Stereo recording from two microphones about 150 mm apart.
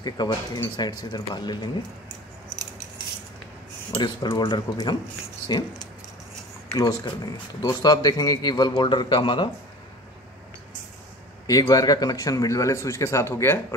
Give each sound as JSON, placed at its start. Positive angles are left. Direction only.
{"t": 0.0, "sound": "a man's voice", "side_deg": 30}
{"t": 4.0, "sound": "a man's voice", "side_deg": 30}
{"t": 6.7, "sound": "a man's voice", "side_deg": 25}
{"t": 11.6, "sound": "a man's voice", "side_deg": 25}